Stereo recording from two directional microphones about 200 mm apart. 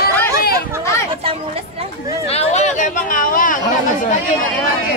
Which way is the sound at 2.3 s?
30° left (ahead or behind).